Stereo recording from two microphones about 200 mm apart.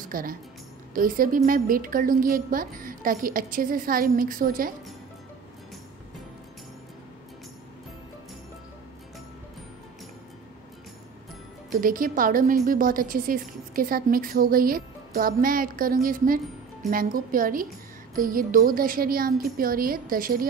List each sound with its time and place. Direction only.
0.1 s a woman's voice: 45° right (ahead or behind)
11.7 s a woman's voice: 45° right (ahead or behind)